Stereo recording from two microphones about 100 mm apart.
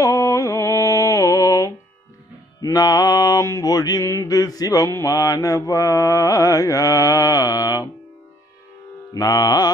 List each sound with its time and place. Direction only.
0.0 s mantra: 30° left (ahead or behind)
9.1 s mantra: 35° left (ahead or behind)